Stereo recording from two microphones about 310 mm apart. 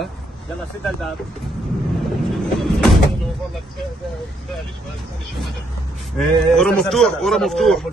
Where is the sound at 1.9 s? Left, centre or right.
Centre.